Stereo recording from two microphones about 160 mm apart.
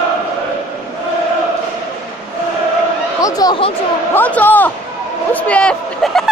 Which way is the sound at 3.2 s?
25° left (ahead or behind).